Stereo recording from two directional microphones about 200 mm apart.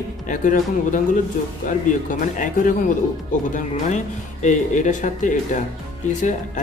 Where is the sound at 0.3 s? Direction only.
40° left (ahead or behind).